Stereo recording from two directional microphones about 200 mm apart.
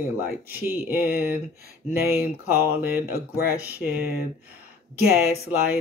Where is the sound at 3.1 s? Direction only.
50° left (ahead or behind).